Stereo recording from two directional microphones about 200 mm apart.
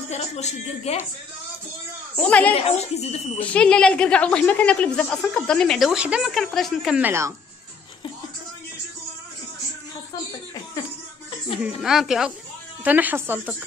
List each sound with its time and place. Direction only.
0.1 s speech: 35° left (ahead or behind)
2.1 s a woman's voice: 5° left (ahead or behind)
2.6 s speech: 30° left (ahead or behind)
3.3 s a woman's voice: 5° left (ahead or behind); by 7.3 s 10° right (ahead or behind)
11.6 s a woman's voice: centre (ahead or behind)